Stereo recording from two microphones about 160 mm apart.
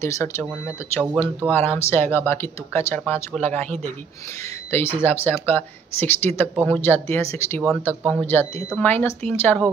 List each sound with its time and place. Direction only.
0.0 s speech: 15° left (ahead or behind)
1.1 s speech: 5° right (ahead or behind)
1.7 s speech: 15° left (ahead or behind)